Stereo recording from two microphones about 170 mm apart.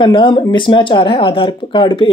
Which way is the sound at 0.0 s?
30° left (ahead or behind).